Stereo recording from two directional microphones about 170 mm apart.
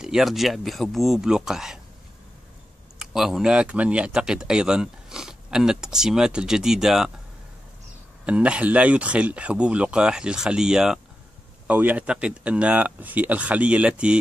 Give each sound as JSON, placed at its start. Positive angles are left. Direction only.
{"t": 0.0, "sound": "speech", "side_deg": -5}
{"t": 3.0, "sound": "speech", "side_deg": 0}
{"t": 8.3, "sound": "speech", "side_deg": -5}